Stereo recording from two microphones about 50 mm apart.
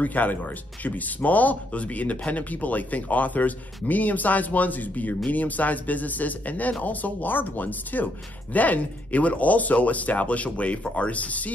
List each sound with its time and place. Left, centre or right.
0.0 s speech: left